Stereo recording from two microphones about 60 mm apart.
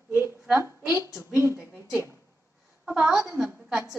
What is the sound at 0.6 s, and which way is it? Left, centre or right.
Speech, right.